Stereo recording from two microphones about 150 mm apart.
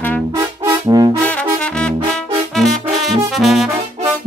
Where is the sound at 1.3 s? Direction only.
10° left (ahead or behind).